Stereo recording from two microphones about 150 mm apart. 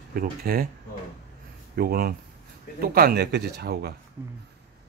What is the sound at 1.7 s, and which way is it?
Speech, 85° right.